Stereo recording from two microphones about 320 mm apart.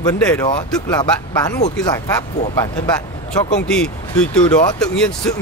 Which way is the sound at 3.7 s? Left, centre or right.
Centre.